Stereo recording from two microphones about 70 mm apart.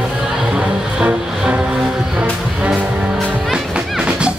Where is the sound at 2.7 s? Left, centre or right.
Centre.